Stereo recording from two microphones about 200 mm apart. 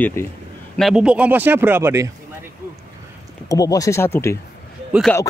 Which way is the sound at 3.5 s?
20° left (ahead or behind).